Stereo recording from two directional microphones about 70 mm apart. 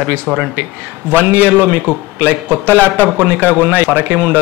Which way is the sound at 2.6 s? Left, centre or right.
Left.